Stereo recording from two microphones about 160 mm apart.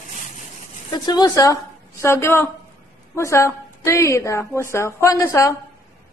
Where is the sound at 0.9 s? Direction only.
25° left (ahead or behind).